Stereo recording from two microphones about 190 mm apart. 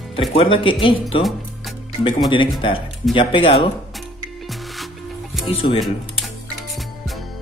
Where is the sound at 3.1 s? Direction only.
25° left (ahead or behind).